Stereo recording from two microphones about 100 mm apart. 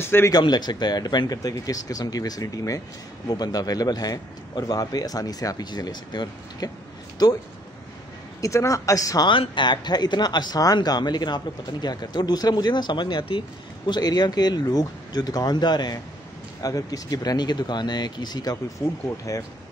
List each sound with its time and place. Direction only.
0.0 s speech: 25° left (ahead or behind)
0.3 s a man's voice: 45° left (ahead or behind)
8.4 s a man's voice: 30° left (ahead or behind)
9.3 s a man's voice: 55° left (ahead or behind)